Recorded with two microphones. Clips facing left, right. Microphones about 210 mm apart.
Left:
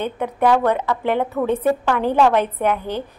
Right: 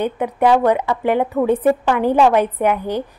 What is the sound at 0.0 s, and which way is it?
A woman's voice, 10° right (ahead or behind).